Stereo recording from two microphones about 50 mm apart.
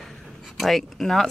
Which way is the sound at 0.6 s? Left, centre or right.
Centre.